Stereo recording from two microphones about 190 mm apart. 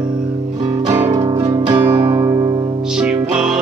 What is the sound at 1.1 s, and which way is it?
Music, 20° right (ahead or behind).